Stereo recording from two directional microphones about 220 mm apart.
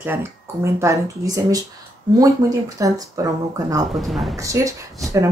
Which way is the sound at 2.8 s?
15° right (ahead or behind).